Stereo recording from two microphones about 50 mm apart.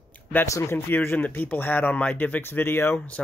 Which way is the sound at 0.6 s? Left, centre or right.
Left.